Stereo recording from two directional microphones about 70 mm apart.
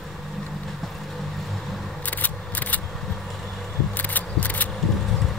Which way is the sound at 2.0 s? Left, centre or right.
Left.